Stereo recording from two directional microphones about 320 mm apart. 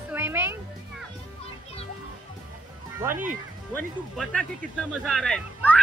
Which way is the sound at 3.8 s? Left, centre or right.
Centre.